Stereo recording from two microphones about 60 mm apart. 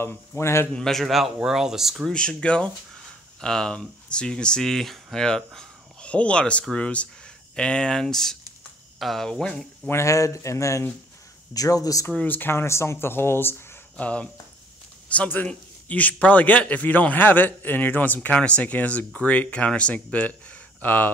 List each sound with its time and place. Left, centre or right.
0.0 s speech: left
0.7 s speech: centre
2.0 s a man's voice: centre
9.8 s speech: left
11.5 s speech: left
12.3 s speech: left
13.9 s a man's voice: left